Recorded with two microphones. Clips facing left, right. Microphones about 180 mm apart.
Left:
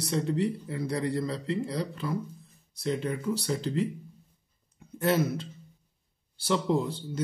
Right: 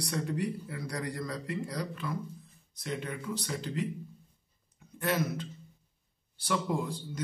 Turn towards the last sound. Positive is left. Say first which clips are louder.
# left 5 dB
turn(degrees=25)  # may be behind; listen again after turning